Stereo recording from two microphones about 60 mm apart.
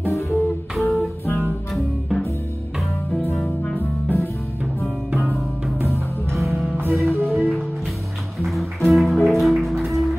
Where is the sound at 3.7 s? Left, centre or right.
Left.